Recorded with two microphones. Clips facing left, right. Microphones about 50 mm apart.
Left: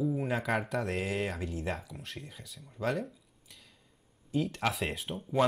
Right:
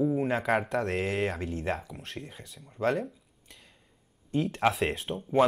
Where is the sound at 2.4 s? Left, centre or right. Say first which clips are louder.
Right 1 dB; centre.